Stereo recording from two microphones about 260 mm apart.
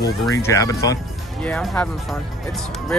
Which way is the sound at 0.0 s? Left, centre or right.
Centre.